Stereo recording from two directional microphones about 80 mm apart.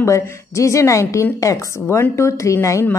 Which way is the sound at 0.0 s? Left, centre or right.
Left.